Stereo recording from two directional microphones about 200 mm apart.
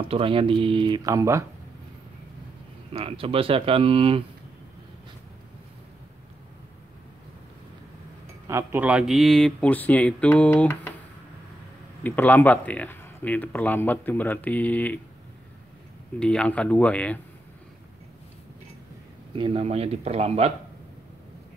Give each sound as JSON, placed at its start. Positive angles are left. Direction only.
{"t": 0.1, "sound": "speech", "side_deg": -25}
{"t": 2.9, "sound": "speech", "side_deg": -30}
{"t": 8.5, "sound": "speech", "side_deg": -10}
{"t": 12.0, "sound": "a man's voice", "side_deg": 10}
{"t": 16.2, "sound": "speech", "side_deg": 5}
{"t": 19.3, "sound": "speech", "side_deg": -25}